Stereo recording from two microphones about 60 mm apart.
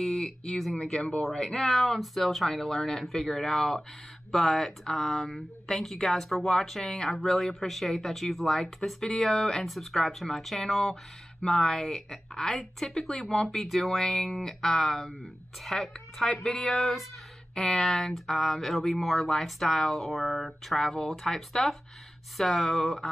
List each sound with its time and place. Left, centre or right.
0.0 s speech: centre